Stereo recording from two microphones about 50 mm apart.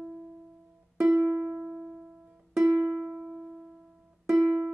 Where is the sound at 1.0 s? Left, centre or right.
Centre.